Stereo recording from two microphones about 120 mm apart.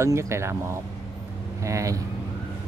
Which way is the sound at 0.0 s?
25° right (ahead or behind).